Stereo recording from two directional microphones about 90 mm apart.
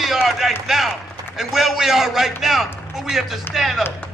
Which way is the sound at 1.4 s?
5° right (ahead or behind).